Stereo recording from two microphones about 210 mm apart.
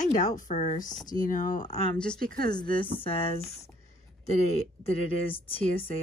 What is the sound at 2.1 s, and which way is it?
Speech, 45° right (ahead or behind).